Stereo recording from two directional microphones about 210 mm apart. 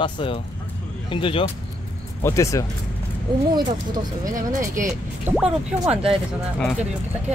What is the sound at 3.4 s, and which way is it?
Speech, 20° right (ahead or behind).